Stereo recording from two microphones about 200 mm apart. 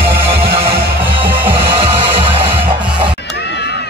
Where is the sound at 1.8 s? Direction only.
30° right (ahead or behind).